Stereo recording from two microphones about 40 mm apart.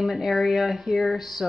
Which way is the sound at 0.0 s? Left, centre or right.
Centre.